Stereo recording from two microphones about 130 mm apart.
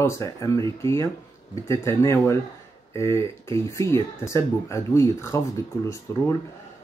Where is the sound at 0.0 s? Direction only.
25° left (ahead or behind).